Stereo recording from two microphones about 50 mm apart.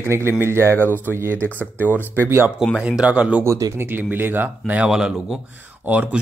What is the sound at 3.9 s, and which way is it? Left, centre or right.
Speech, right.